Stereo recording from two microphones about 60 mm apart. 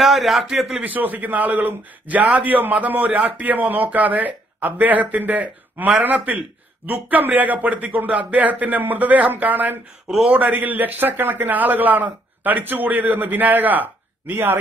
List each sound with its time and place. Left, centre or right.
0.0 s a man's voice: centre
0.7 s a man's voice: right